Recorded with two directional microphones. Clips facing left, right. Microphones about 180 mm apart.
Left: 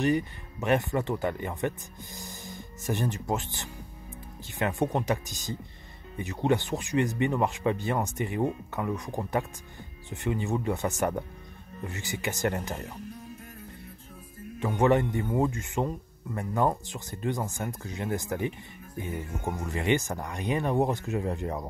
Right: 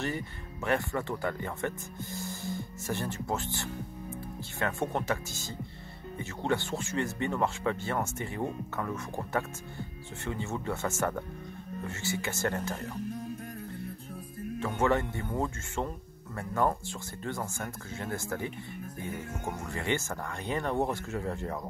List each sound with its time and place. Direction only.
0.0 s speech: 20° left (ahead or behind)
14.6 s speech: 15° left (ahead or behind)
19.6 s speech: 20° left (ahead or behind)